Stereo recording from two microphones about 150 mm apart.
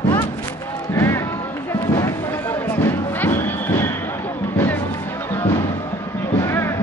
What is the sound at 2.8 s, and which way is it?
Music, 15° left (ahead or behind).